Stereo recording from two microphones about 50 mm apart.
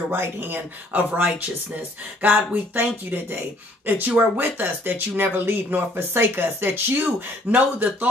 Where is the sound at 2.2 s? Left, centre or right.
Right.